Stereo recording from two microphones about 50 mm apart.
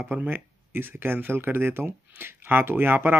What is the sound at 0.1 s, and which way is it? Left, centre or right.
Speech, right.